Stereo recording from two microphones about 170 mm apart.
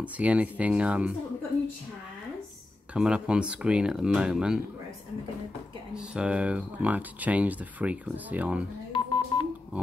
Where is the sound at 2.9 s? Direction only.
5° right (ahead or behind).